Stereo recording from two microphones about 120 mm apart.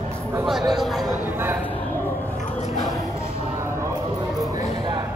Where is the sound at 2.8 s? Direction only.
25° left (ahead or behind).